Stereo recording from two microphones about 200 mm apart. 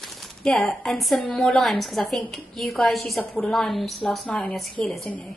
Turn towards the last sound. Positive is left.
turn(degrees=0)  # may be behind; listen again after turning